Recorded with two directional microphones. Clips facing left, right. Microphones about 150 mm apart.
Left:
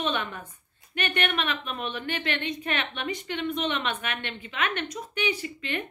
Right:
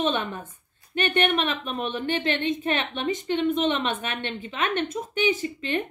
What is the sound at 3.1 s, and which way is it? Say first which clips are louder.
A woman's voice: right 9 dB; 20° right (ahead or behind).